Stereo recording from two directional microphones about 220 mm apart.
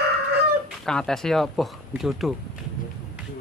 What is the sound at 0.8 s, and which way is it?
Speech, centre (ahead or behind).